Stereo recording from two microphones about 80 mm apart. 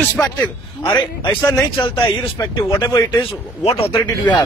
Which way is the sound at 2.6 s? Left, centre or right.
Left.